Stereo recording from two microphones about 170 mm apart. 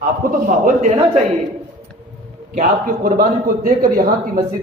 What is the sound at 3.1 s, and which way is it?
Speech, 55° right (ahead or behind).